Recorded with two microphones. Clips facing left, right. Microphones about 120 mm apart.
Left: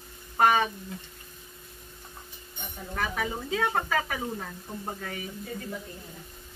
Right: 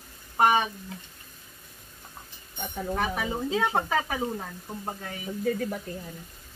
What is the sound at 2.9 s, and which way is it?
Speech, 20° right (ahead or behind).